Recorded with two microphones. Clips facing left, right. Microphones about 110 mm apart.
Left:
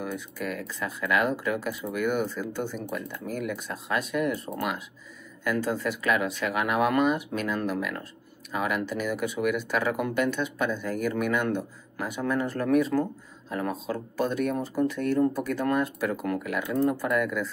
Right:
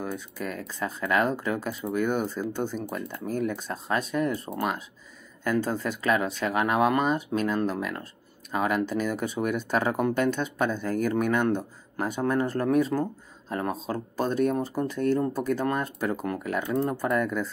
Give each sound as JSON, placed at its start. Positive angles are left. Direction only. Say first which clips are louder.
{"t": 0.0, "sound": "speech", "louder": "even", "side_deg": -35}